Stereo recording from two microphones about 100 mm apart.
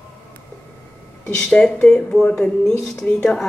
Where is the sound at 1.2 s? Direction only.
10° left (ahead or behind).